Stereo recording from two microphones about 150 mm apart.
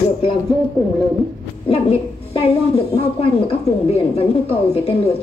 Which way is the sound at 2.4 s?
40° left (ahead or behind).